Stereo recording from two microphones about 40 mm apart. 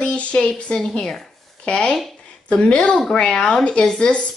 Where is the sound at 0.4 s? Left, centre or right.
Left.